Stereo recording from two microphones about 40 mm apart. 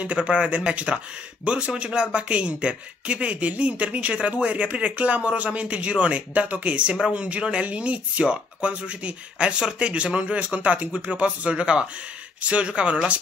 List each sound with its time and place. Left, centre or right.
0.0 s speech: right